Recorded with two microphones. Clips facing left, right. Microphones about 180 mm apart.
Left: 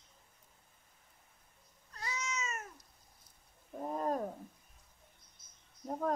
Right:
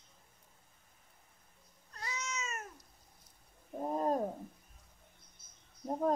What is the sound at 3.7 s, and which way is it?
Wild animals, 25° right (ahead or behind).